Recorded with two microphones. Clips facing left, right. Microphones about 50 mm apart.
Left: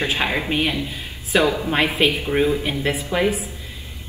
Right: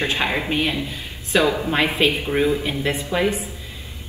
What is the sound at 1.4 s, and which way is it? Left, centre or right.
Speech, right.